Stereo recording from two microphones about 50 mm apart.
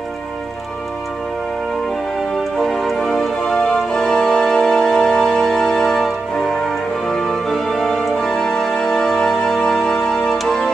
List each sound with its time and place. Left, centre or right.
2.5 s music: centre